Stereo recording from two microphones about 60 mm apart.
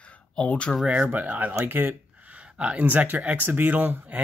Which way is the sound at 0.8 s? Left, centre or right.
Centre.